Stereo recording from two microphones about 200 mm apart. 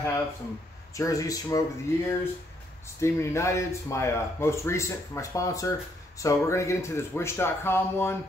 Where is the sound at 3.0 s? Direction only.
15° left (ahead or behind).